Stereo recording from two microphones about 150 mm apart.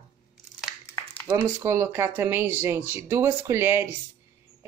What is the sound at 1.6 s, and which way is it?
Speech, 15° right (ahead or behind).